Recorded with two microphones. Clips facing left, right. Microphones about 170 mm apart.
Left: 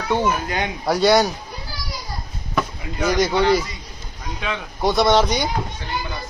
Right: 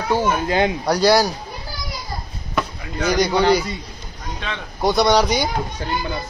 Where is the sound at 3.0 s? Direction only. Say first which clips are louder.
Right 1 dB; centre (ahead or behind).